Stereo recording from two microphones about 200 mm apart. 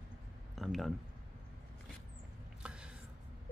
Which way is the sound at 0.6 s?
Centre (ahead or behind).